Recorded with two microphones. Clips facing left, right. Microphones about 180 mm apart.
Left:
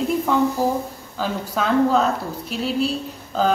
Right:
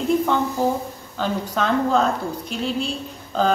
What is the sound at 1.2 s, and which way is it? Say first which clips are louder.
Speech: right 1 dB; 5° left (ahead or behind).